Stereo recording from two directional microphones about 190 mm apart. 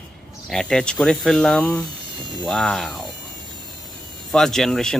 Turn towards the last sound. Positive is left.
turn(degrees=0)  # may be behind; listen again after turning